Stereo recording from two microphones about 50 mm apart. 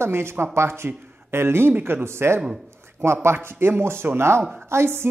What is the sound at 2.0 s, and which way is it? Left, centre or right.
A woman's voice, right.